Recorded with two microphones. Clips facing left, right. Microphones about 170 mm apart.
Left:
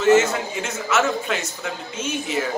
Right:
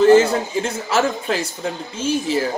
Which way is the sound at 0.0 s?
30° right (ahead or behind).